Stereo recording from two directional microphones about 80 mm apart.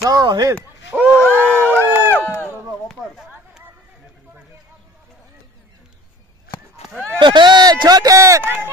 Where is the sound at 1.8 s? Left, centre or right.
Right.